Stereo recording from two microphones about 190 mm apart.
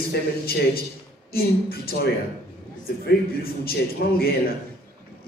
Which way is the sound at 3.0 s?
55° left (ahead or behind).